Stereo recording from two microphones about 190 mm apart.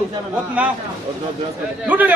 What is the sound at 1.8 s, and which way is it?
Speech, 10° right (ahead or behind).